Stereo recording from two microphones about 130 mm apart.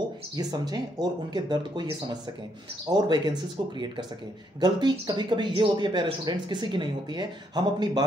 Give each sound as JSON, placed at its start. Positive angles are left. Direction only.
{"t": 0.4, "sound": "speech", "side_deg": -30}
{"t": 4.6, "sound": "speech", "side_deg": -35}